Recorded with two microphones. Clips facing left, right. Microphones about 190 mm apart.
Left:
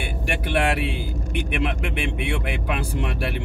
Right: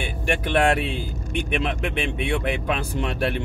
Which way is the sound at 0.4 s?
10° left (ahead or behind).